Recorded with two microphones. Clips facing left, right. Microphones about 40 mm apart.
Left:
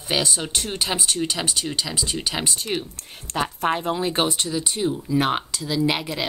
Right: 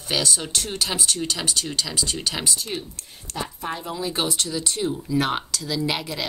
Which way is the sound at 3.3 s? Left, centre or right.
Left.